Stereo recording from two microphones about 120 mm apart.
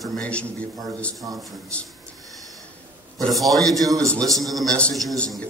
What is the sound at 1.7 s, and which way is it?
Speech, 10° left (ahead or behind).